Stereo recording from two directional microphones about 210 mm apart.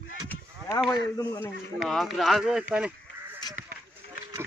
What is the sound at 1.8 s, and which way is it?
Speech, centre (ahead or behind).